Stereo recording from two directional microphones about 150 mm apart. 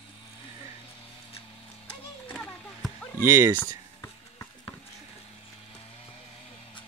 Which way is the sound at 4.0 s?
25° left (ahead or behind).